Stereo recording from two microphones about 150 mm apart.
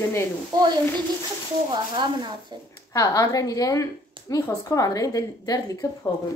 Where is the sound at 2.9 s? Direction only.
25° left (ahead or behind).